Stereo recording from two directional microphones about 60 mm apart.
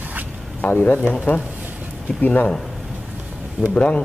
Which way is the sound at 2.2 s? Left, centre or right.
Left.